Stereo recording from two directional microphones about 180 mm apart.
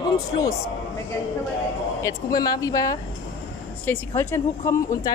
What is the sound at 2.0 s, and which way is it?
Speech, 20° left (ahead or behind).